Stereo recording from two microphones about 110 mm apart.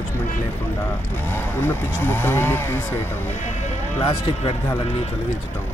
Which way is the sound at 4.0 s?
60° left (ahead or behind).